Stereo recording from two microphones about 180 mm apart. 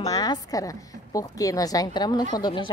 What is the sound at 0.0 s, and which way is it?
A woman's voice, 20° left (ahead or behind).